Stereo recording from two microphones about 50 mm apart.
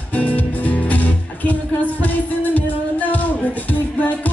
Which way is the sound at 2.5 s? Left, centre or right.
Left.